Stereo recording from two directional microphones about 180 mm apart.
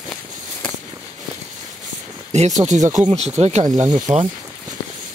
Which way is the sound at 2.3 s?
40° right (ahead or behind).